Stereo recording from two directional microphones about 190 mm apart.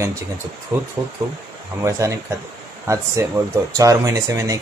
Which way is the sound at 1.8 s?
15° right (ahead or behind).